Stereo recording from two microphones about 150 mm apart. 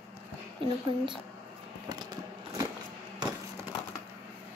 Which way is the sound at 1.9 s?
25° right (ahead or behind).